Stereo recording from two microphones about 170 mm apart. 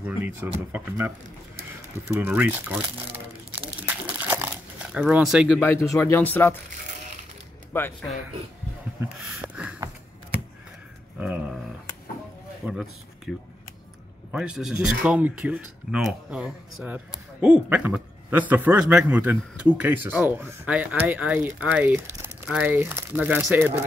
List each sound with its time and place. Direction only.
0.7 s a man's voice: 10° right (ahead or behind)
3.8 s crumpling: 10° right (ahead or behind)
5.0 s speech: 5° right (ahead or behind)
5.6 s speech: 15° left (ahead or behind)
7.7 s speech: 10° left (ahead or behind)
9.2 s a sound: 10° right (ahead or behind)
11.1 s a sound: 10° right (ahead or behind)
12.6 s a man's voice: 15° right (ahead or behind)
13.3 s a man's voice: centre (ahead or behind)